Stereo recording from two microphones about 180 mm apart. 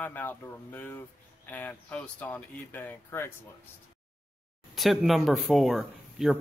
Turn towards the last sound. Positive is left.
turn(degrees=0)  # may be behind; listen again after turning